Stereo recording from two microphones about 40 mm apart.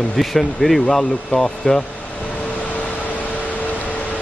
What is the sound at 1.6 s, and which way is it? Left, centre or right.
Speech, centre.